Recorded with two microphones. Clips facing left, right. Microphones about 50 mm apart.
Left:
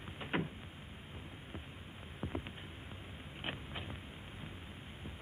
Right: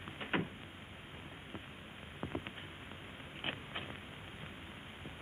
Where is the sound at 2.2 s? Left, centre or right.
Centre.